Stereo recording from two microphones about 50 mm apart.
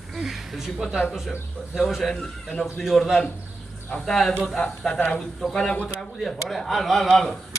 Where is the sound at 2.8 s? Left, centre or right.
Centre; by 5.3 s left.